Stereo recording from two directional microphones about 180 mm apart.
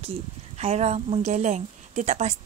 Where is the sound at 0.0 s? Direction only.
35° right (ahead or behind).